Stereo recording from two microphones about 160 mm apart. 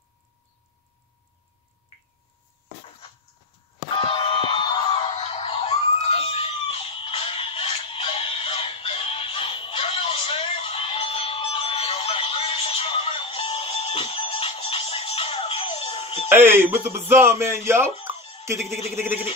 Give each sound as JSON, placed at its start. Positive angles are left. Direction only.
{"t": 3.9, "sound": "a sound", "side_deg": 35}
{"t": 4.9, "sound": "screaming", "side_deg": 40}
{"t": 16.3, "sound": "speech", "side_deg": -15}
{"t": 18.1, "sound": "music", "side_deg": 35}